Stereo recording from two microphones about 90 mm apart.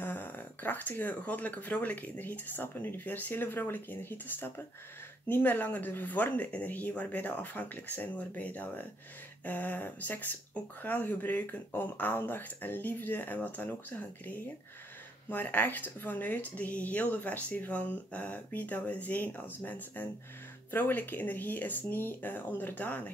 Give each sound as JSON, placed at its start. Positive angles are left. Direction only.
{"t": 0.0, "sound": "speech", "side_deg": 20}